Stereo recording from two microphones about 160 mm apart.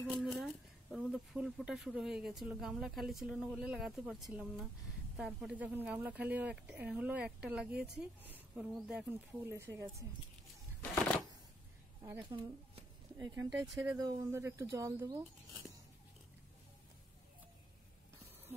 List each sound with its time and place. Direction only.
0.2 s speech: centre (ahead or behind)
9.5 s speech: 20° right (ahead or behind)
12.0 s speech: 20° right (ahead or behind)
12.4 s speech: 30° right (ahead or behind)